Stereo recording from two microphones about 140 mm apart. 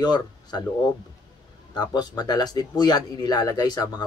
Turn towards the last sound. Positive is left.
turn(degrees=30)  # may be behind; listen again after turning